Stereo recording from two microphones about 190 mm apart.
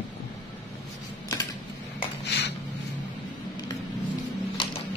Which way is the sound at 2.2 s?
65° left (ahead or behind).